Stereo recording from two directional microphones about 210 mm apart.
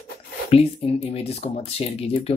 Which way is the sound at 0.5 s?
30° left (ahead or behind).